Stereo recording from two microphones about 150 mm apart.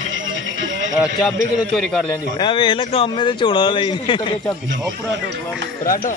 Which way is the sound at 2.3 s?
35° left (ahead or behind).